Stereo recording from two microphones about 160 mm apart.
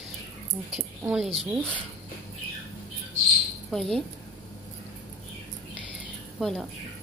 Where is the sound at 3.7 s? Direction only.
Centre (ahead or behind).